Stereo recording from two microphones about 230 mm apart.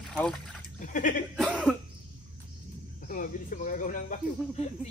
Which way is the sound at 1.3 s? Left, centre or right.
Centre.